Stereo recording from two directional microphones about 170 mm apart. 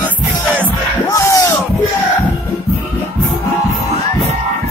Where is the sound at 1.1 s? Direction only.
20° left (ahead or behind).